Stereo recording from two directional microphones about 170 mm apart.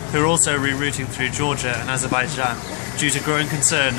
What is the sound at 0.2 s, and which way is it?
Speech, 40° left (ahead or behind).